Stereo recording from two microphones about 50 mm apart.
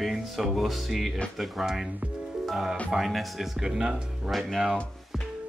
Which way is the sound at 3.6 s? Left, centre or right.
Centre.